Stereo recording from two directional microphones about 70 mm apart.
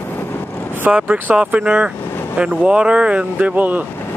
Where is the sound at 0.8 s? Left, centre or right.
Right.